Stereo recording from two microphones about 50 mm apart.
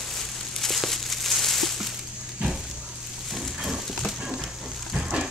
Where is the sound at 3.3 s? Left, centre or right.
Centre.